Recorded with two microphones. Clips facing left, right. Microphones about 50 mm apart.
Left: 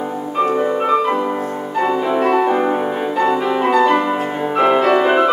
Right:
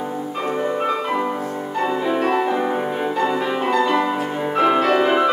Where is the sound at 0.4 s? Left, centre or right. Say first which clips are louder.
Left 6 dB; centre.